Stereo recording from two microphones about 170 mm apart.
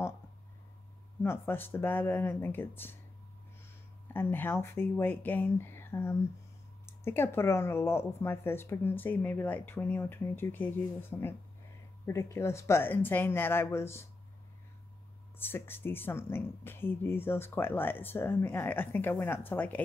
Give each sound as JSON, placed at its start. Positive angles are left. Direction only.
{"t": 1.2, "sound": "speech", "side_deg": 15}
{"t": 4.1, "sound": "speech", "side_deg": 10}
{"t": 15.3, "sound": "speech", "side_deg": 10}